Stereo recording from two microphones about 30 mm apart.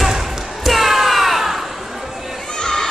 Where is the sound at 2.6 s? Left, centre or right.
Centre.